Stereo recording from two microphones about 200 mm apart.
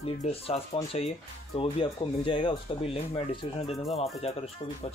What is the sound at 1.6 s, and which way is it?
Speech, 25° left (ahead or behind).